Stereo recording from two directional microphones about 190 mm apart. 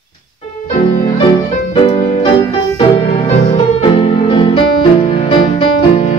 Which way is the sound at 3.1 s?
35° left (ahead or behind).